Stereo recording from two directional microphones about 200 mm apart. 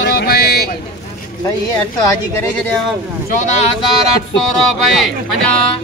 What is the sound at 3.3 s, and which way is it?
Speech, 35° left (ahead or behind).